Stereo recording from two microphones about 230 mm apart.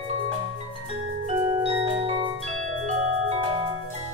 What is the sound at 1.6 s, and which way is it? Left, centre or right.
Music, right.